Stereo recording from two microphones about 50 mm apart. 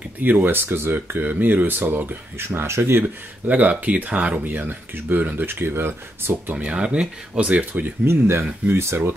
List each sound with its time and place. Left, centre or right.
0.2 s speech: right
1.2 s speech: right
2.3 s speech: right
3.4 s speech: right
8.0 s speech: right